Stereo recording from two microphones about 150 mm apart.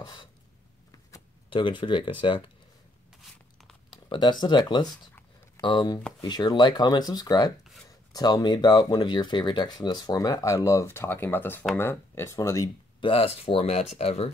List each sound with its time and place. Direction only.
0.0 s a sound: 30° left (ahead or behind)
1.5 s speech: 35° left (ahead or behind)
3.9 s speech: 30° left (ahead or behind)
13.0 s speech: 40° left (ahead or behind)